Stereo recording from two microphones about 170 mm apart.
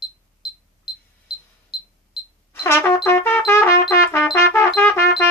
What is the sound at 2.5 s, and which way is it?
Music, 15° left (ahead or behind).